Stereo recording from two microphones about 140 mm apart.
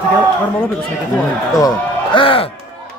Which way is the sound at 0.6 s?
5° left (ahead or behind).